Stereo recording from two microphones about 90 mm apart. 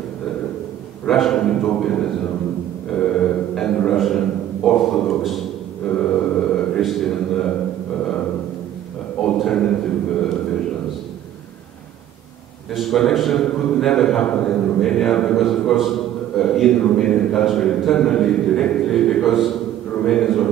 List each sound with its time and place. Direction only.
1.0 s a man's voice: 5° left (ahead or behind)
5.9 s mantra: 15° left (ahead or behind)
6.8 s a man's voice: centre (ahead or behind)
12.7 s a man's voice: 5° left (ahead or behind)
20.0 s a sound: 5° left (ahead or behind)